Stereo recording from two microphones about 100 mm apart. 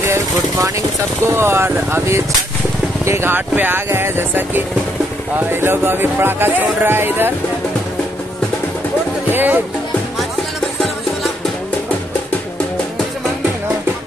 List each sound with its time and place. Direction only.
1.2 s speech: 25° right (ahead or behind)
9.3 s speech: 20° right (ahead or behind)